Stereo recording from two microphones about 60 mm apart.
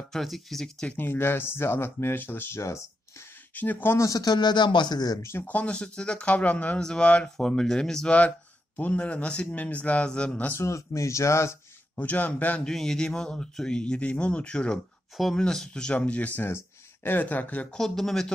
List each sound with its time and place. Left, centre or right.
0.1 s speech: centre
0.9 s speech: left
2.6 s speech: left
3.5 s speech: left
3.9 s speech: left
5.4 s speech: left
6.8 s speech: centre
8.7 s speech: left
10.6 s speech: left
11.9 s speech: left
12.6 s speech: centre; by 16.4 s left
16.4 s speech: left
17.6 s speech: centre